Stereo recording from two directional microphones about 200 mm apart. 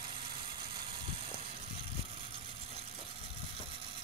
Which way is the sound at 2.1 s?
25° right (ahead or behind).